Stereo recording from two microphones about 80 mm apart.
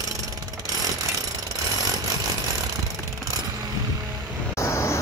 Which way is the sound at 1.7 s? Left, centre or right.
Right.